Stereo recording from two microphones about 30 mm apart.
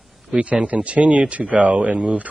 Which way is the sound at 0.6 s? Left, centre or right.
Right.